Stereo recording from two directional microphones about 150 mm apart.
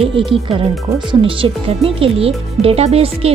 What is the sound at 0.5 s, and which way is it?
Speech, 35° right (ahead or behind).